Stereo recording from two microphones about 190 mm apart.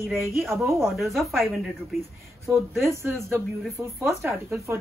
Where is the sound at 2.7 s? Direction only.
15° right (ahead or behind).